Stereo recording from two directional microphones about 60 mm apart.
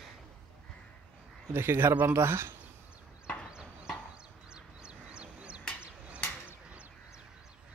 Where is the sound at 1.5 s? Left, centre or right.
Right.